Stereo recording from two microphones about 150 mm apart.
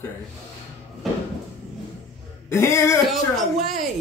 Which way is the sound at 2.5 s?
20° left (ahead or behind).